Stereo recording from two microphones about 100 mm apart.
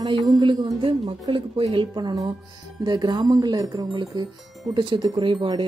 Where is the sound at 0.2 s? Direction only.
45° right (ahead or behind).